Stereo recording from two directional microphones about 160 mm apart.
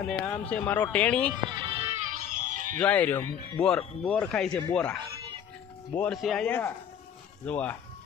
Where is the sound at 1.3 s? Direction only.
30° right (ahead or behind).